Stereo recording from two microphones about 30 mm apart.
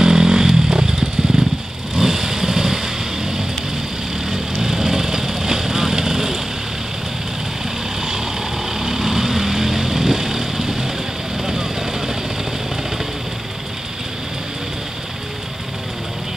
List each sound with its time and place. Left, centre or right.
0.0 s motorcycle: right
2.0 s vehicle: centre
8.7 s vehicle: centre